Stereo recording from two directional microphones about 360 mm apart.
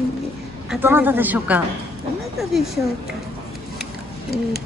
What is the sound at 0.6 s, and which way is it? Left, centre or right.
A woman's voice, centre.